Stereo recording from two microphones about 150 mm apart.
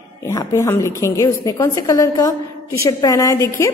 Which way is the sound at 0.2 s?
20° left (ahead or behind).